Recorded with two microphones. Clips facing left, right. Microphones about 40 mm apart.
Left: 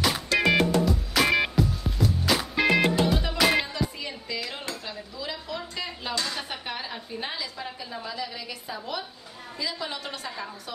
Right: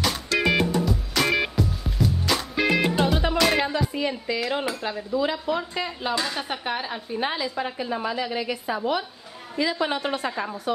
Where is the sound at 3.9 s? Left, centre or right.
Right.